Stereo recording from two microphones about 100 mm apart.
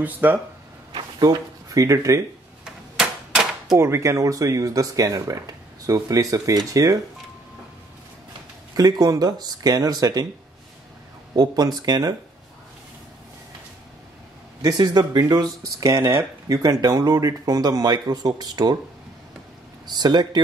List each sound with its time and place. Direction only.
0.0 s speech: 15° right (ahead or behind)
0.9 s speech: 40° right (ahead or behind)
2.6 s a sound: 5° right (ahead or behind)
3.7 s speech: 25° right (ahead or behind)
8.7 s speech: 40° right (ahead or behind)
11.3 s speech: 45° right (ahead or behind)
14.6 s speech: 45° right (ahead or behind)
19.9 s speech: 45° right (ahead or behind)